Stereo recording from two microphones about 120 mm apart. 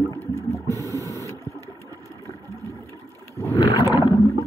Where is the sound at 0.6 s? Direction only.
25° right (ahead or behind).